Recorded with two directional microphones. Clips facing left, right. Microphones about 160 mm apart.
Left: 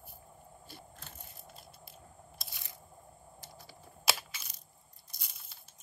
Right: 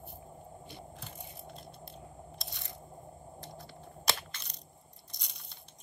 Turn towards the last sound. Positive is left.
turn(degrees=5)  # may be behind; listen again after turning